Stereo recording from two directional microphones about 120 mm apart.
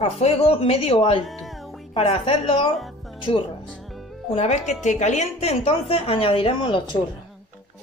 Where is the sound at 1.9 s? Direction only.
50° left (ahead or behind).